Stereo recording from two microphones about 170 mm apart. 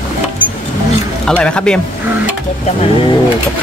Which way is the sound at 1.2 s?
5° left (ahead or behind).